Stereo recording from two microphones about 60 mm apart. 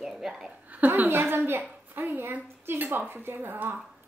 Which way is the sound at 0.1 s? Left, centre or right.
Centre.